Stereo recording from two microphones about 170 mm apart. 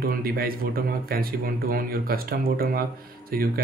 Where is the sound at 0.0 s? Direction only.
60° right (ahead or behind).